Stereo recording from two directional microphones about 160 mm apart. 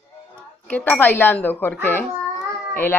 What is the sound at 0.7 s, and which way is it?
Speech, 10° left (ahead or behind).